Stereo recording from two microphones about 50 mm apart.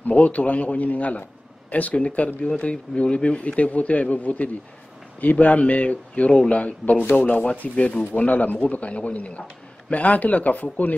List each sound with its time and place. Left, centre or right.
0.0 s speech: left